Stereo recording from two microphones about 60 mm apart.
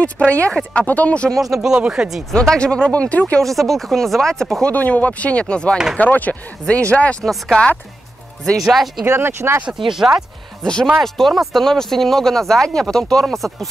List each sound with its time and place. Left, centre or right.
0.0 s speech: left
1.3 s speech: centre
2.3 s speech: centre
3.3 s speech: centre
4.6 s speech: left
8.5 s speech: centre
9.0 s speech: right
9.9 s speech: centre
10.6 s speech: centre
11.0 s speech: centre